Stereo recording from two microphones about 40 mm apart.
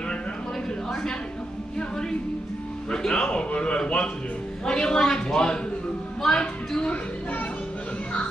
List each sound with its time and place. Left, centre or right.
1.8 s music: centre
2.9 s a man's voice: centre